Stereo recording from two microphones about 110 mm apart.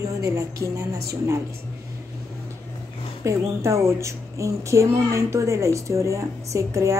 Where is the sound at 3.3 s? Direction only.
25° right (ahead or behind).